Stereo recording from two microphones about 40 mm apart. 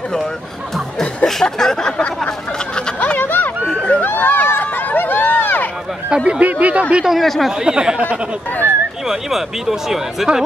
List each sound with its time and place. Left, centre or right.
1.2 s speech: centre
3.2 s a sound: left
6.0 s speech: right
6.4 s speech: right
7.1 s speech: centre
7.5 s speech: centre
9.0 s speech: centre